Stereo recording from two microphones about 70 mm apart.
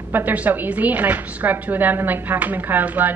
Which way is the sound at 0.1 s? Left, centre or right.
Right.